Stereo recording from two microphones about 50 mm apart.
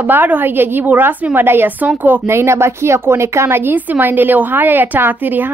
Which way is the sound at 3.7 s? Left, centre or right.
Right.